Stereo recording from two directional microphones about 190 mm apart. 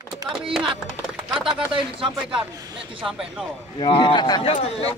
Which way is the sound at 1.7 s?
25° right (ahead or behind).